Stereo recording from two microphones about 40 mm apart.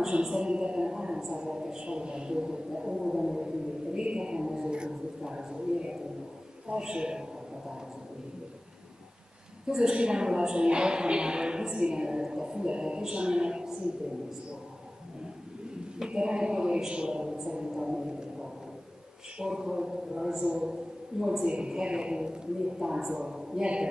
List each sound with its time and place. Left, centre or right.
0.1 s a woman's voice: centre
4.0 s a sound: right
6.7 s a woman's voice: right
9.7 s a woman's voice: centre
16.1 s a woman's voice: right
17.7 s a sound: centre
19.3 s a man's voice: centre
21.5 s a woman's voice: right